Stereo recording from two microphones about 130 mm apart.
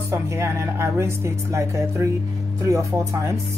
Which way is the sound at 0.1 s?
20° right (ahead or behind).